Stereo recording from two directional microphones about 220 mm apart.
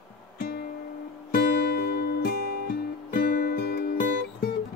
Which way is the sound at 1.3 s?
45° left (ahead or behind).